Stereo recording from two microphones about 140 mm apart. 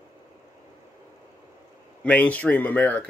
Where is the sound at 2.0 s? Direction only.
10° left (ahead or behind).